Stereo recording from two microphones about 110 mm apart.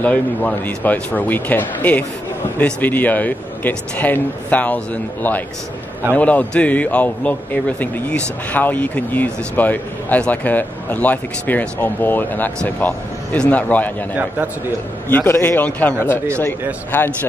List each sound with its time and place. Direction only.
0.0 s a man's voice: 10° left (ahead or behind)
15.0 s a man's voice: 20° left (ahead or behind)